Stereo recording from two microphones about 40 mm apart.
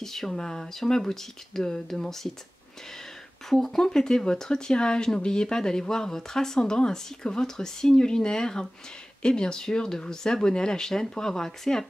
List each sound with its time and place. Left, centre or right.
0.0 s speech: centre
3.4 s speech: centre